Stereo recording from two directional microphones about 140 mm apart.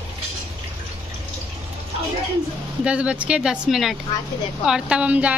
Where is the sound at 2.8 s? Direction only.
10° right (ahead or behind).